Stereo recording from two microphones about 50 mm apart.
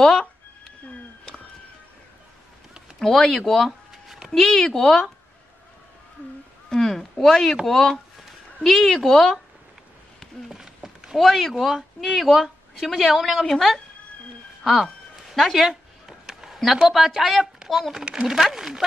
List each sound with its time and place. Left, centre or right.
0.0 s speech: centre
3.0 s speech: centre
3.9 s a sound: centre
4.3 s speech: centre
6.7 s speech: centre
7.6 s a sound: centre
8.6 s speech: centre
10.5 s speech: centre
14.6 s a sound: centre
16.1 s a child's voice: centre